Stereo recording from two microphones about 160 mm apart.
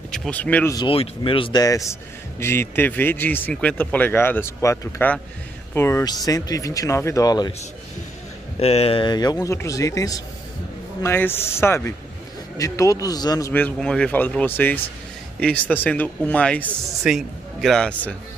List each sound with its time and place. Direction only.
0.1 s speech: 5° left (ahead or behind)
0.7 s speech: 35° left (ahead or behind)
8.5 s speech: 40° left (ahead or behind); by 13.5 s 25° left (ahead or behind)
13.5 s a man's voice: 10° left (ahead or behind)